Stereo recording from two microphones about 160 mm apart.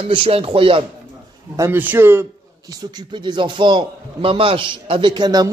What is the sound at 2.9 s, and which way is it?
A man's voice, 30° right (ahead or behind).